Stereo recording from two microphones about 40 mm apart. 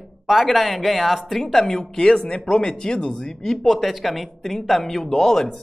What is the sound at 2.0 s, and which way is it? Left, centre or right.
Speech, left.